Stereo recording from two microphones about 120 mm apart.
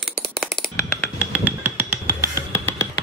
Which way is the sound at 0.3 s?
Centre (ahead or behind).